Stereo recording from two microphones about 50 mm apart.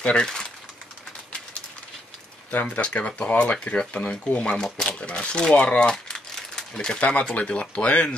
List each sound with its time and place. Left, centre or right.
0.0 s speech: centre
2.5 s speech: left